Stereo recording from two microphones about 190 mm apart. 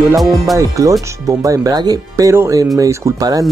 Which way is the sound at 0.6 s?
15° right (ahead or behind).